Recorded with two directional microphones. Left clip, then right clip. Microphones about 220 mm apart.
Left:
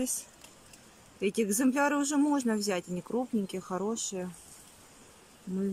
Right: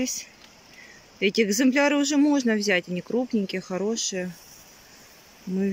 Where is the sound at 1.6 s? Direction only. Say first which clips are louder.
Right 5 dB; 5° right (ahead or behind).